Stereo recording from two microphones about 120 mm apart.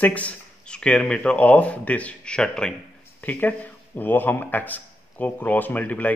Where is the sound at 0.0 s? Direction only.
10° left (ahead or behind).